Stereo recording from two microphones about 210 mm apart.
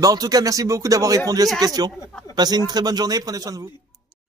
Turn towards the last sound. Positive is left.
turn(degrees=-15)  # may be behind; listen again after turning